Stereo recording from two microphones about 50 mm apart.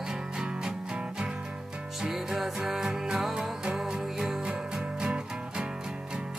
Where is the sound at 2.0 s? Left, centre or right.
Centre.